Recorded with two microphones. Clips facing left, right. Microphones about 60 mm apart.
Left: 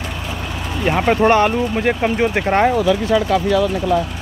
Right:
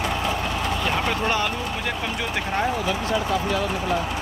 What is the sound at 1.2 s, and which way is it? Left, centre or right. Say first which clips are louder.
Speech: left 10 dB; left.